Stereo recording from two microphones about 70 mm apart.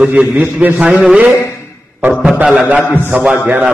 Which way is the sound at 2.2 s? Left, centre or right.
Centre.